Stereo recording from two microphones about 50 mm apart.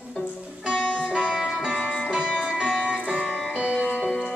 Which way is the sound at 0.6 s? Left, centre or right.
Centre.